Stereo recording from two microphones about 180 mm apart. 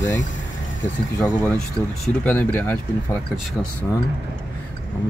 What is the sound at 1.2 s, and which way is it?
Speech, 10° left (ahead or behind).